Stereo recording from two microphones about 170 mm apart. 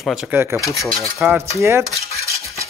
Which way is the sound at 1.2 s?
10° right (ahead or behind).